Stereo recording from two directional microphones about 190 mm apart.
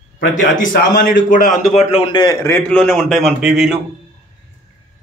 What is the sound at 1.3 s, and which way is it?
A man's voice, 45° left (ahead or behind).